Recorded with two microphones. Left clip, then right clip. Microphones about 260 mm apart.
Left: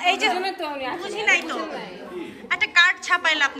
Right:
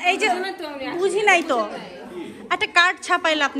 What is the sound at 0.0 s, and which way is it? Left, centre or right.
Speech, centre.